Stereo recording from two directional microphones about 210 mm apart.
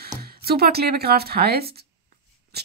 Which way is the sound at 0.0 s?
50° right (ahead or behind).